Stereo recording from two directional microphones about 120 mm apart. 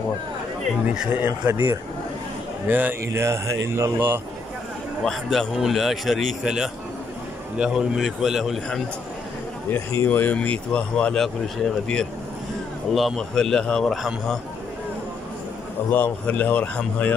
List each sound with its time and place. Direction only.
1.2 s speech: 20° right (ahead or behind)
5.0 s a man's voice: 5° left (ahead or behind)
9.7 s a man's voice: 20° left (ahead or behind); by 14.4 s 5° left (ahead or behind)
15.9 s speech: 10° left (ahead or behind)